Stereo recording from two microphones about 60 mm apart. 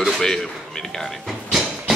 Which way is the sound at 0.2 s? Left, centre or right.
Centre.